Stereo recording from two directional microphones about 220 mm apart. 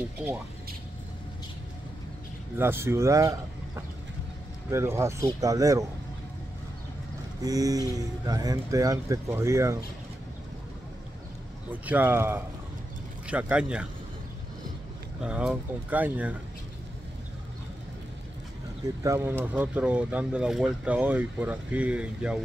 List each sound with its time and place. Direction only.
2.6 s speech: 10° right (ahead or behind)
7.4 s speech: 15° right (ahead or behind)
11.7 s speech: 5° right (ahead or behind)
15.2 s speech: 5° right (ahead or behind)
19.0 s speech: 10° right (ahead or behind)